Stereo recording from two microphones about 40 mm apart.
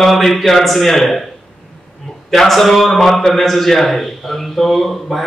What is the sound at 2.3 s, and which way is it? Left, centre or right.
A man's voice, centre.